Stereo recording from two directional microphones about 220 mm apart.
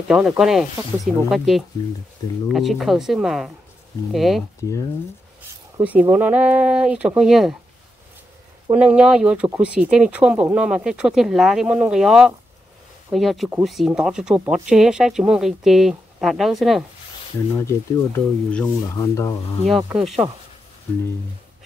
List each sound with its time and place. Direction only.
0.1 s speech: 5° right (ahead or behind)
5.8 s speech: 5° right (ahead or behind)
8.6 s speech: 5° right (ahead or behind)
17.6 s speech: 10° left (ahead or behind)
20.2 s speech: 15° right (ahead or behind)